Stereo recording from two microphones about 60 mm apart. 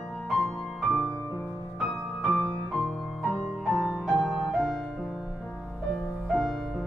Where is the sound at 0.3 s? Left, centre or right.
Centre.